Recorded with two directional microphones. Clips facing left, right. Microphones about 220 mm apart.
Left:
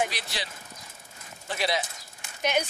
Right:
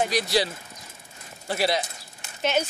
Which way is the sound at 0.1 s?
35° right (ahead or behind).